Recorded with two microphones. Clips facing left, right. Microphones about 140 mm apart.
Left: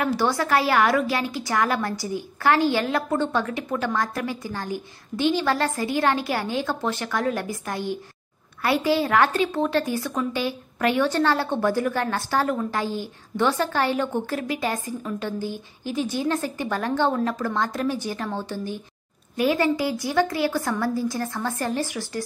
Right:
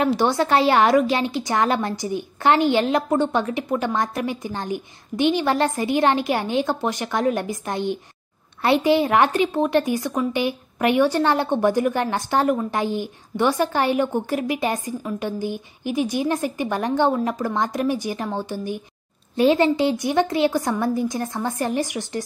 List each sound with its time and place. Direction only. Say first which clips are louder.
0.0 s a woman's voice: right 4 dB; 20° right (ahead or behind)
19.3 s a woman's voice: right 4 dB; 25° right (ahead or behind)